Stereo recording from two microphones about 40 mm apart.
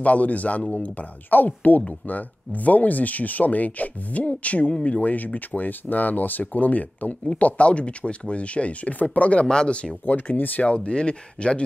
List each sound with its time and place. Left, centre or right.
0.0 s speech: left
10.3 s speech: left
10.6 s speech: left